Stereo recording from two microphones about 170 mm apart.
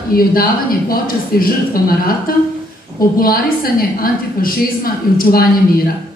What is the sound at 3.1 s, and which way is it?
A woman's voice, 60° left (ahead or behind).